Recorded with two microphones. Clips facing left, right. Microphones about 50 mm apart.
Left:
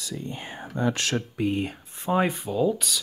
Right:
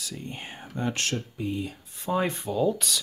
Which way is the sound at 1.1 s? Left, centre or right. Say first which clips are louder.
Left 5 dB; left.